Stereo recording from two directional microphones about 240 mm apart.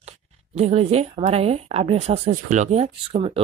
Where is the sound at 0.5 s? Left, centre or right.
Right.